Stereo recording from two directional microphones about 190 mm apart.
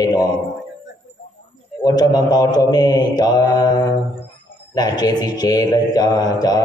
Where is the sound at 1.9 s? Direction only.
20° left (ahead or behind).